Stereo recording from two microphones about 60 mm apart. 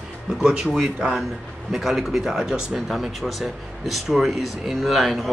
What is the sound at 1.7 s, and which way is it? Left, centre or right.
Speech, centre.